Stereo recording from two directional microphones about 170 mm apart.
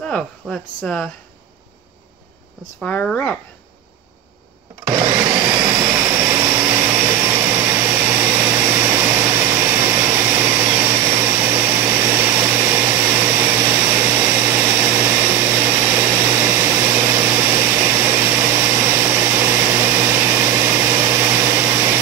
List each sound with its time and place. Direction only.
0.0 s speech: 5° left (ahead or behind)
2.8 s speech: 5° left (ahead or behind)
4.8 s blender: 20° right (ahead or behind)
12.5 s vacuum cleaner: 15° right (ahead or behind)